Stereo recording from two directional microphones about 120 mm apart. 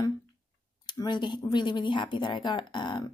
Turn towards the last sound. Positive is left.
turn(degrees=40)  # may be behind; listen again after turning